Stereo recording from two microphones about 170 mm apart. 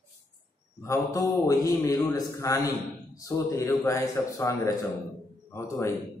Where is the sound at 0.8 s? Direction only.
20° left (ahead or behind).